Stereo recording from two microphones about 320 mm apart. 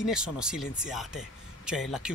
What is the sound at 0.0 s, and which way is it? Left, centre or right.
Speech, centre.